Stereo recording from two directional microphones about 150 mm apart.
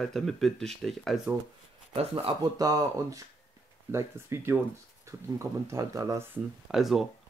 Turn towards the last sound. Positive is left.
turn(degrees=0)  # may be behind; listen again after turning